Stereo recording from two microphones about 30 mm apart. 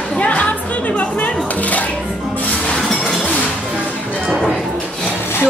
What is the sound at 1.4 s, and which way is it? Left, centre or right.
Dishes, left.